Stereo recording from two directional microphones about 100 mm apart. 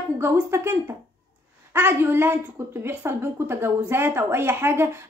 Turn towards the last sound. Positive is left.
turn(degrees=-25)  # may be behind; listen again after turning